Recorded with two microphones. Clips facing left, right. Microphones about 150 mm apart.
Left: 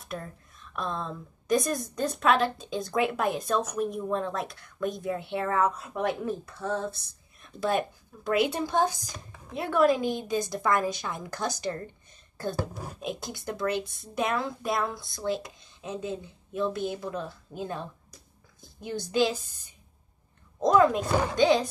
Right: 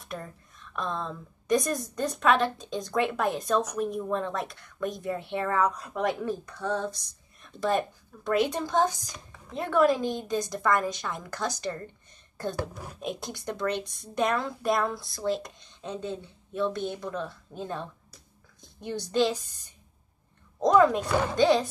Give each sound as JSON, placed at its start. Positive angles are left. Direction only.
{"t": 0.0, "sound": "a woman's voice", "side_deg": 0}
{"t": 13.0, "sound": "a woman's voice", "side_deg": 0}